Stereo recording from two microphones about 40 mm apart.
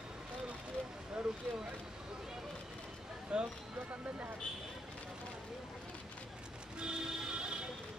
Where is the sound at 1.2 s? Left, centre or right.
Centre.